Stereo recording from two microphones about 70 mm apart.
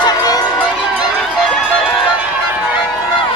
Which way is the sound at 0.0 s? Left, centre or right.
Left.